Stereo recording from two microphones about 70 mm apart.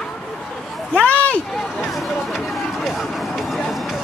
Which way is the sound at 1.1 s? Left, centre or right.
Left.